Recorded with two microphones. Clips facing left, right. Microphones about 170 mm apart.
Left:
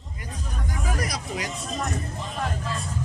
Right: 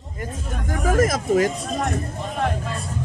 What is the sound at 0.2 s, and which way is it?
Speech, 50° right (ahead or behind).